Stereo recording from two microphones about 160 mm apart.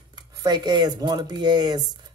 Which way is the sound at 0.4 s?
25° right (ahead or behind).